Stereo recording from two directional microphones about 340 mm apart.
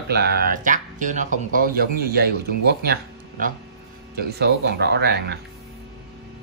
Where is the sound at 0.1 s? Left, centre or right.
Right.